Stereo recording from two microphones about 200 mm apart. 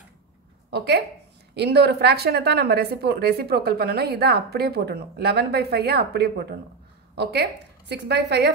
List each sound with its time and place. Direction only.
0.7 s a woman's voice: 55° right (ahead or behind)